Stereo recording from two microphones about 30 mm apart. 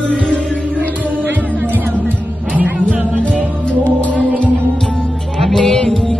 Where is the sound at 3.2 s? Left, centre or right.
Left.